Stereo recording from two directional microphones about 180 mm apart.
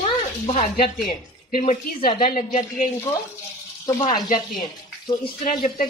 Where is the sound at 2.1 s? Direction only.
30° left (ahead or behind).